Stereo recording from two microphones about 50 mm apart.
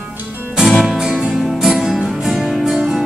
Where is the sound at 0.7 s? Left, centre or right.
Centre.